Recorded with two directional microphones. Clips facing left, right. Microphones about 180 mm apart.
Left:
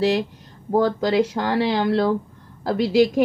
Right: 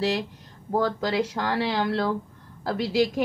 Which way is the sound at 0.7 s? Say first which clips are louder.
Left 6 dB; 20° left (ahead or behind).